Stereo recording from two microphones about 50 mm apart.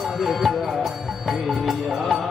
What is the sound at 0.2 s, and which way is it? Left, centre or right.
Music, centre.